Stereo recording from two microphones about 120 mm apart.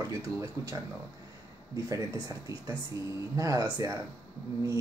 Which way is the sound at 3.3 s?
25° right (ahead or behind).